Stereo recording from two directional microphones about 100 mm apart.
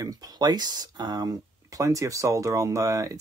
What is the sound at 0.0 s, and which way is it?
Speech, 40° right (ahead or behind).